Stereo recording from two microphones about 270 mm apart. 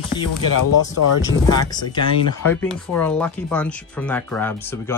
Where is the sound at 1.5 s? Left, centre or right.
Centre.